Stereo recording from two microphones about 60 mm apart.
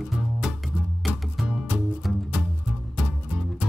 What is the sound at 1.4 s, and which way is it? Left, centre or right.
Music, centre.